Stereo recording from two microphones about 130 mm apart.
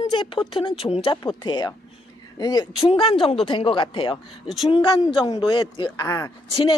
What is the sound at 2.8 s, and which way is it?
Speech, 45° left (ahead or behind).